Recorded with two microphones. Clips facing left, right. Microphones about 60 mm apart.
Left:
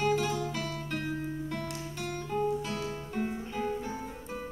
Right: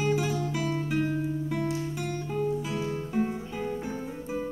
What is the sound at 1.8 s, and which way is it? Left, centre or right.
Music, centre.